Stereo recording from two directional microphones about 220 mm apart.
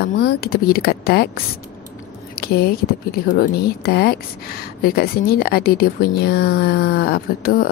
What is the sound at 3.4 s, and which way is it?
Speech, 45° left (ahead or behind).